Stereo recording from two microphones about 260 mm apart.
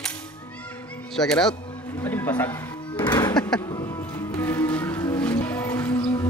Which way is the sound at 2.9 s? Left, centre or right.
Centre.